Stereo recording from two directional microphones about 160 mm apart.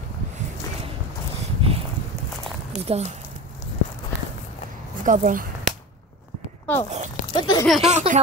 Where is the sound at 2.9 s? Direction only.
45° right (ahead or behind).